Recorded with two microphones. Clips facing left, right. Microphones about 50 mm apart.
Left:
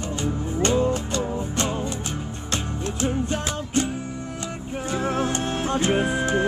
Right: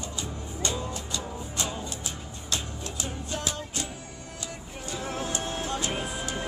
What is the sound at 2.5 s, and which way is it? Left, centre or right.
Music, left.